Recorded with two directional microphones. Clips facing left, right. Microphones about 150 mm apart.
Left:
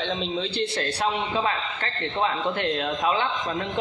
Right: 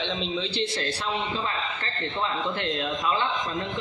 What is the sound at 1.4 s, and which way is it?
A man's voice, 70° left (ahead or behind).